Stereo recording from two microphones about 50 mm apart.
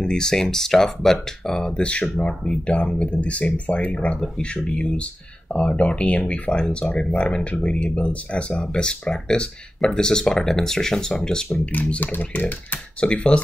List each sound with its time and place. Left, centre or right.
0.0 s speech: centre
1.8 s speech: left
11.6 s speech: left
13.0 s speech: left